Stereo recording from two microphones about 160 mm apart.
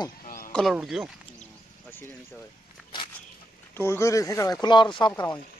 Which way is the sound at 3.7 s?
15° left (ahead or behind).